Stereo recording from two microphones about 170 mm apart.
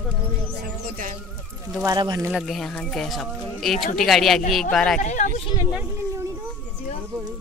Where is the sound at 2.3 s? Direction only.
Centre (ahead or behind).